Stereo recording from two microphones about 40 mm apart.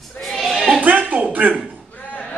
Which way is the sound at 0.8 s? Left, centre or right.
Right.